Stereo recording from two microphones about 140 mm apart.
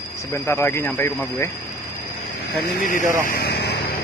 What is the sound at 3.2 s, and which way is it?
Vehicle, 85° left.